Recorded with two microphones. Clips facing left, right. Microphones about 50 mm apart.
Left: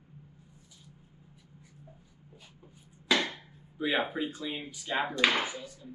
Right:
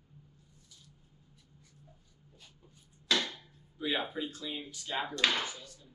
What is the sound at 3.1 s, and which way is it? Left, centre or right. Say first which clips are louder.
Speech: left 4 dB; left.